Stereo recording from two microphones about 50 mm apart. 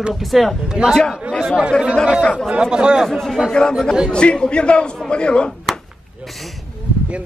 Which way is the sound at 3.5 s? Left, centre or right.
Centre.